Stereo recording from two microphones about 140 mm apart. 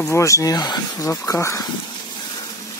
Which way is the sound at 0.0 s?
20° left (ahead or behind).